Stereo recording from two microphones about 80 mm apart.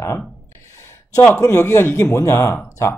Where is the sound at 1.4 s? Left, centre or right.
Left.